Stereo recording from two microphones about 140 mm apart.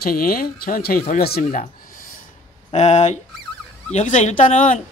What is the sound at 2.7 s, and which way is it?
Speech, 55° left (ahead or behind).